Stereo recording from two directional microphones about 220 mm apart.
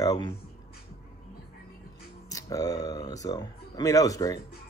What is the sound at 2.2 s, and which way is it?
Speech, 15° left (ahead or behind).